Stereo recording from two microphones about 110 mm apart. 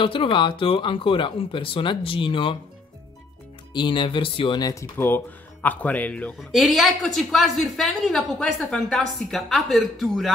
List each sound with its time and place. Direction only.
0.0 s speech: 50° left (ahead or behind)
3.7 s speech: 45° left (ahead or behind)
4.6 s speech: 35° left (ahead or behind)
4.9 s speech: 20° left (ahead or behind)
6.5 s speech: centre (ahead or behind)